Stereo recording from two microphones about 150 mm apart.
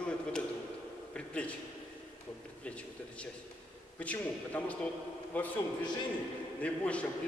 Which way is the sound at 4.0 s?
10° left (ahead or behind).